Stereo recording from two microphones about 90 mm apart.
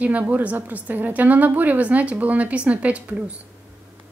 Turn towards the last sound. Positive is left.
turn(degrees=-15)  # may be behind; listen again after turning